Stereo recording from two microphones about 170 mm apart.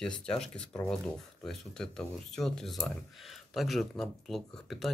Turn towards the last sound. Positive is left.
turn(degrees=0)  # may be behind; listen again after turning